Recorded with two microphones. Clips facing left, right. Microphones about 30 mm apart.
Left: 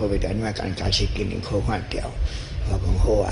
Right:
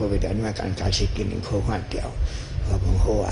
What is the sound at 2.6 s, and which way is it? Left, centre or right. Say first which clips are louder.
Speech: left 1 dB; left.